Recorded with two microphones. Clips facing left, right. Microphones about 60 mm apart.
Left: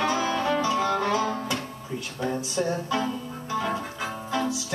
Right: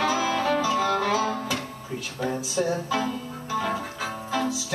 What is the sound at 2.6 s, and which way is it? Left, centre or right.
Music, centre.